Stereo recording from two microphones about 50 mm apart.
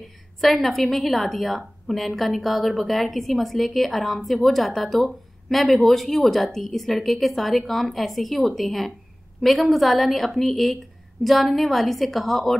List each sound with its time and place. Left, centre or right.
0.4 s a woman's voice: centre